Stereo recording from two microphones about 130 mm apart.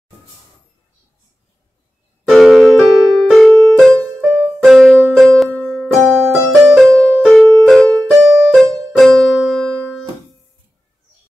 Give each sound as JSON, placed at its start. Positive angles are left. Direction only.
{"t": 2.2, "sound": "music", "side_deg": 0}